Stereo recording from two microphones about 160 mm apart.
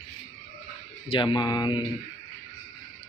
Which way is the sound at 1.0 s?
30° left (ahead or behind).